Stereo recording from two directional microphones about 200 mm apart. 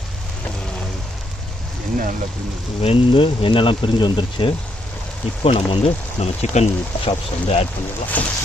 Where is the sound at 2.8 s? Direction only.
25° left (ahead or behind).